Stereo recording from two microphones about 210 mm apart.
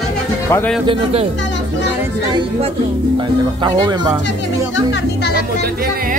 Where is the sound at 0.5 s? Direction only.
10° left (ahead or behind).